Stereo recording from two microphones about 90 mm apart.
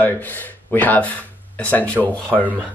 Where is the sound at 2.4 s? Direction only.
20° right (ahead or behind).